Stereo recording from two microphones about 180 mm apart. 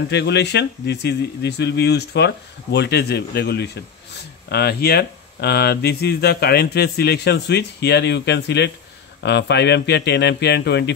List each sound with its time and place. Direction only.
0.1 s speech: 70° left (ahead or behind)